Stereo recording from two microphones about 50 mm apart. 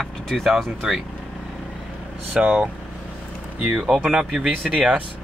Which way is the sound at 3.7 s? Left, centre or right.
Centre.